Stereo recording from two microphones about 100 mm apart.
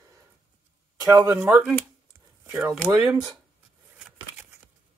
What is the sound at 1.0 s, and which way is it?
Speech, 30° right (ahead or behind).